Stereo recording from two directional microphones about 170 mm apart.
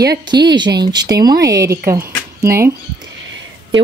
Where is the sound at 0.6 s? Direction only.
25° right (ahead or behind).